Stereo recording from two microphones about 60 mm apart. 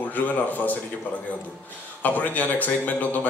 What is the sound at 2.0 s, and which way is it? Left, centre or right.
Speech, left.